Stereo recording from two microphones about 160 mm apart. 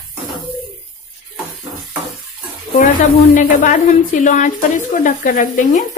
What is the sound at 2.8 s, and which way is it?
A woman's voice, 50° left (ahead or behind).